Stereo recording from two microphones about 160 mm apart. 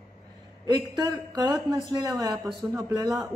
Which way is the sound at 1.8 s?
Centre (ahead or behind).